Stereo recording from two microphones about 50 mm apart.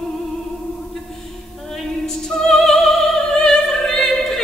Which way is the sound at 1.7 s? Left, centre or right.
Centre.